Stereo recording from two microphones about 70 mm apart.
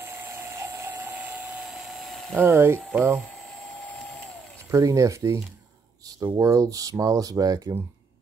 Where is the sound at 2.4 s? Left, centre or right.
Right.